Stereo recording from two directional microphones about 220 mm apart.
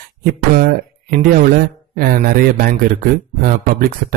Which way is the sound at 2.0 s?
40° right (ahead or behind).